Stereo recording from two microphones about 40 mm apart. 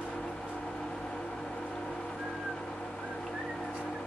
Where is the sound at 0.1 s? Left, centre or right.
Centre.